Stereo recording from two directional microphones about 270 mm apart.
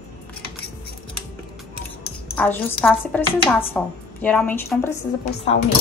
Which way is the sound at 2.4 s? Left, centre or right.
Centre.